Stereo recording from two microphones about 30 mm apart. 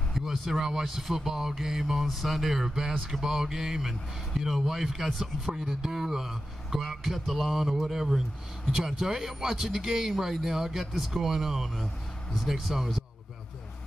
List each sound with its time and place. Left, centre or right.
0.5 s speech: centre
2.8 s speech: right
3.1 s speech: centre